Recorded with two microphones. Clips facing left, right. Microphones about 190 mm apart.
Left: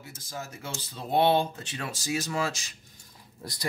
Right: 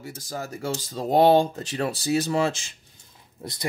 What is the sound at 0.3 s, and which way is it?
Speech, 40° right (ahead or behind).